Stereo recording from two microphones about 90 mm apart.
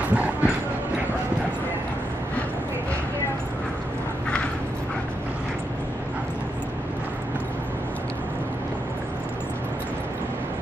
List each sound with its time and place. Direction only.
0.1 s clip-clop: 15° right (ahead or behind)